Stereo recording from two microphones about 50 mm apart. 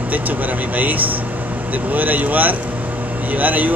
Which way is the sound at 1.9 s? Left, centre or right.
Right.